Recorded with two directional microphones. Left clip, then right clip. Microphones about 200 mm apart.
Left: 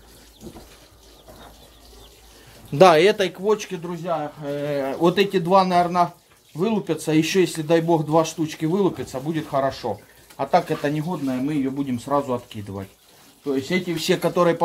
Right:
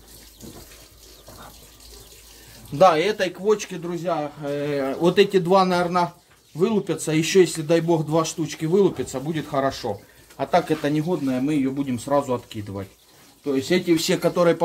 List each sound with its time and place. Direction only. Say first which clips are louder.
2.8 s speech: left 3 dB; 50° left (ahead or behind)
3.4 s speech: even; centre (ahead or behind)